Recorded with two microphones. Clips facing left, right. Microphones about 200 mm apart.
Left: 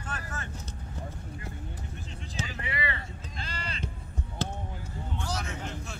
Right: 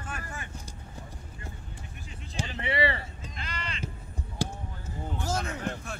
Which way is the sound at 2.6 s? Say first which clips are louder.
Right 9 dB; 30° right (ahead or behind).